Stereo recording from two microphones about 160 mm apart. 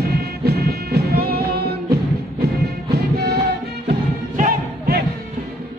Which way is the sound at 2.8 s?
85° right.